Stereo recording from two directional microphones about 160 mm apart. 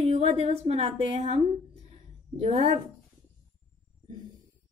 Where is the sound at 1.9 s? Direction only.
40° right (ahead or behind).